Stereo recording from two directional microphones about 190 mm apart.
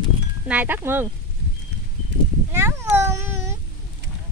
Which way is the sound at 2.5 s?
15° right (ahead or behind).